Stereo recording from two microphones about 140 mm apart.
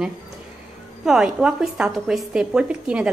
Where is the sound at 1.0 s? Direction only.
5° right (ahead or behind).